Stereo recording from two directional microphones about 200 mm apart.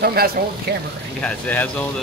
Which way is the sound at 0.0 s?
50° right (ahead or behind).